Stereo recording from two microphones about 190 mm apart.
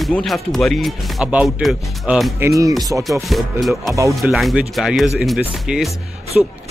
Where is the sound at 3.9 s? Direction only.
15° right (ahead or behind).